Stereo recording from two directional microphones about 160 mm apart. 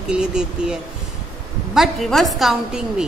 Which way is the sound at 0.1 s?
5° right (ahead or behind).